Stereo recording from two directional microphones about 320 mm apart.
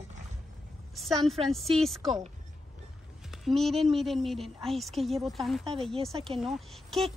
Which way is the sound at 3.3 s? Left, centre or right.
Centre.